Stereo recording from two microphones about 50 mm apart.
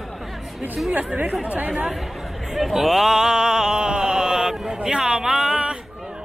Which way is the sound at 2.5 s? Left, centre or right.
Centre.